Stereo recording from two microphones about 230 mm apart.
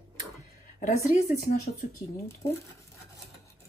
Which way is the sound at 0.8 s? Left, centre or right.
Left.